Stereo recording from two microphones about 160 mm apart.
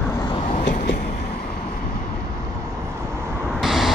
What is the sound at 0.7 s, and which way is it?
Vehicle, 55° left (ahead or behind).